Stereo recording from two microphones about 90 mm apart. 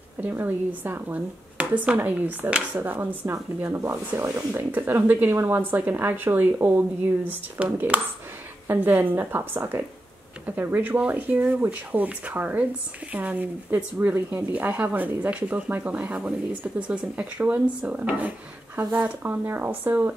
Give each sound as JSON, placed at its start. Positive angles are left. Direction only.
{"t": 0.2, "sound": "speech", "side_deg": -20}